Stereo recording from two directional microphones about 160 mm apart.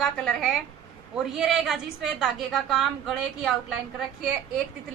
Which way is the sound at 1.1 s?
Centre (ahead or behind).